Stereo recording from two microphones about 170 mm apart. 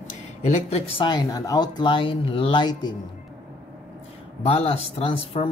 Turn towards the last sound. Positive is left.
turn(degrees=35)  # may be behind; listen again after turning